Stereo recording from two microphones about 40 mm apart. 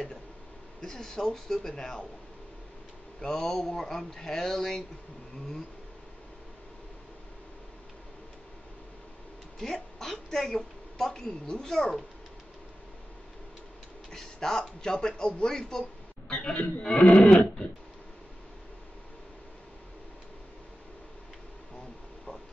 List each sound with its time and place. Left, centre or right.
0.7 s speech: centre
3.2 s speech: centre
9.6 s a woman's voice: centre
14.1 s a man's voice: centre
17.2 s a sound: left